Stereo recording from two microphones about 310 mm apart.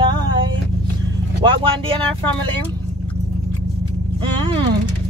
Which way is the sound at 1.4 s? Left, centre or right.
Centre.